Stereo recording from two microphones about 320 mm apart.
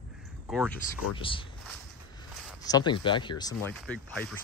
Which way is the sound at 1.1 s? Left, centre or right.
Centre.